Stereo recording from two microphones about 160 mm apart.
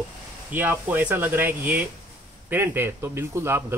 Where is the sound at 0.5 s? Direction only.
10° right (ahead or behind).